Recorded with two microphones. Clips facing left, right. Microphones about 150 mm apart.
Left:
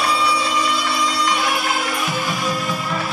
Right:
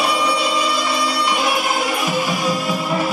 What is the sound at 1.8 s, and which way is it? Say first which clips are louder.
Music: right 3 dB; 10° right (ahead or behind).